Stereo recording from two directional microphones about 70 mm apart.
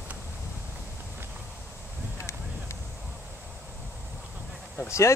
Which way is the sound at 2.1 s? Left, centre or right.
Left.